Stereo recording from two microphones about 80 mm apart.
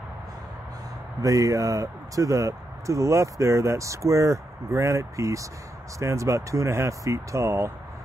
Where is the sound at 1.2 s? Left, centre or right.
Right.